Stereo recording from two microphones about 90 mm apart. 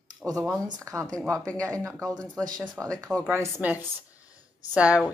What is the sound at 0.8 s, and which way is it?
A woman's voice, 35° right (ahead or behind).